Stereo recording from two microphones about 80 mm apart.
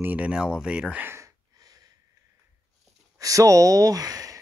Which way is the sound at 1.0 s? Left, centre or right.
Right.